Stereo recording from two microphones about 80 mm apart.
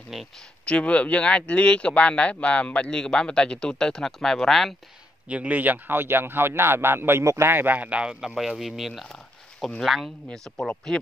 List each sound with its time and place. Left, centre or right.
0.7 s speech: centre
5.3 s a man's voice: centre